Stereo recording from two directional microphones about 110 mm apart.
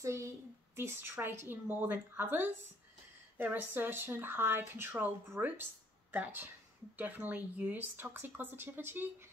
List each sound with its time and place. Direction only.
0.0 s speech: 25° right (ahead or behind)